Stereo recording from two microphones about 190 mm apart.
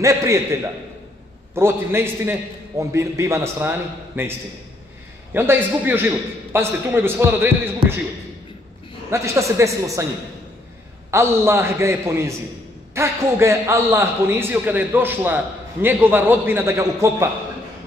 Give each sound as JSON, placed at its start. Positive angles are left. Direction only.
{"t": 0.0, "sound": "a man's voice", "side_deg": -15}
{"t": 1.5, "sound": "a man's voice", "side_deg": -10}
{"t": 5.3, "sound": "a man's voice", "side_deg": -10}
{"t": 9.1, "sound": "a man's voice", "side_deg": -15}
{"t": 11.1, "sound": "a man's voice", "side_deg": -15}